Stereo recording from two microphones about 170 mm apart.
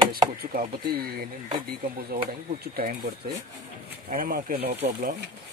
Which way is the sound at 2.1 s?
65° right (ahead or behind).